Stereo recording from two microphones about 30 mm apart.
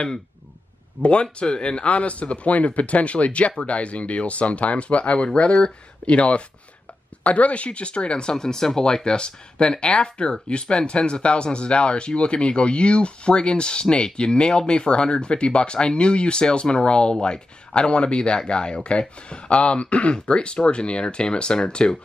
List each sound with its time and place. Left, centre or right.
1.2 s speech: left